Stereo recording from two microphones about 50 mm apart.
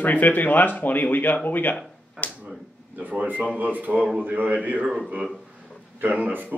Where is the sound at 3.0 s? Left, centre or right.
Right.